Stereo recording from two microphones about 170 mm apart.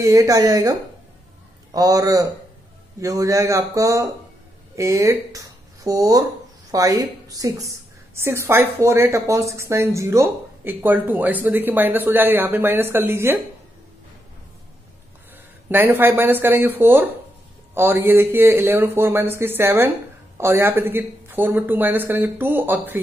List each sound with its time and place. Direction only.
0.0 s a woman's voice: 20° right (ahead or behind)
15.7 s a woman's voice: 10° right (ahead or behind)